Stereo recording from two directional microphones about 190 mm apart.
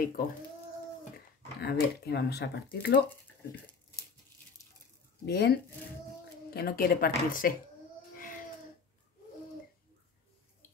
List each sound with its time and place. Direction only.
1.6 s speech: 60° left (ahead or behind)
5.2 s speech: 60° left (ahead or behind)
6.5 s speech: 55° left (ahead or behind)